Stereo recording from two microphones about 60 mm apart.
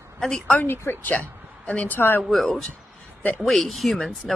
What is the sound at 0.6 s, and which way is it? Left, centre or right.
Speech, left.